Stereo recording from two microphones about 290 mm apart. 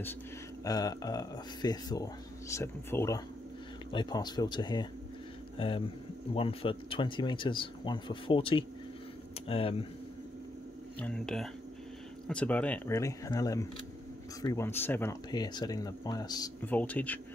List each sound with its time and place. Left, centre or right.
0.7 s speech: centre
11.0 s speech: centre